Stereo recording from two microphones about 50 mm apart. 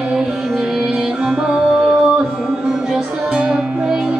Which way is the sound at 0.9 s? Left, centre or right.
Right.